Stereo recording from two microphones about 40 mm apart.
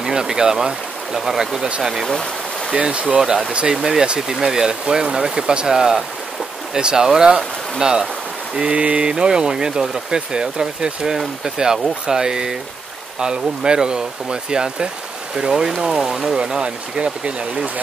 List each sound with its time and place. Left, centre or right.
0.0 s speech: centre
2.0 s stream: centre
2.7 s speech: right
3.2 s speech: centre
8.5 s speech: right
9.1 s speech: centre
13.7 s speech: centre
16.4 s speech: right